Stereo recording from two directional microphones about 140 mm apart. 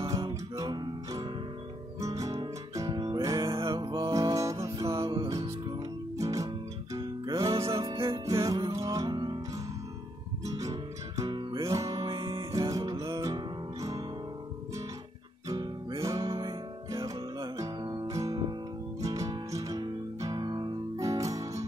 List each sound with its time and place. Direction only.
0.3 s music: 30° right (ahead or behind)
12.4 s music: 25° right (ahead or behind)
15.4 s music: 25° right (ahead or behind)